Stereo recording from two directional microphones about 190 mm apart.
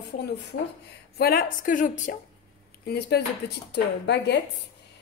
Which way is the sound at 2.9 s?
60° left (ahead or behind).